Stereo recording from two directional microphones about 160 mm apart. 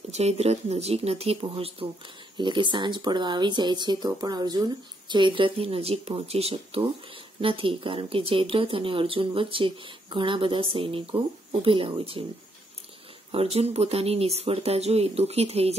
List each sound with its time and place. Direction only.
0.1 s speech: 40° right (ahead or behind)
13.3 s speech: 40° right (ahead or behind)